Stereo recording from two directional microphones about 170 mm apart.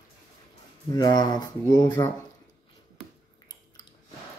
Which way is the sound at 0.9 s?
25° left (ahead or behind).